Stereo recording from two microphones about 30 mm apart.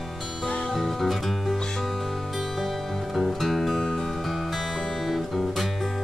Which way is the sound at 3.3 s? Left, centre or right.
Centre.